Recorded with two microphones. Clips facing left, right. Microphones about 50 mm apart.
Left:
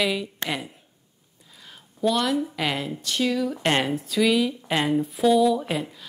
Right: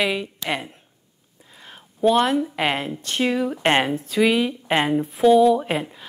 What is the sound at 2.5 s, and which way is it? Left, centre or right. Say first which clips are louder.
A woman's voice: right 4 dB; right.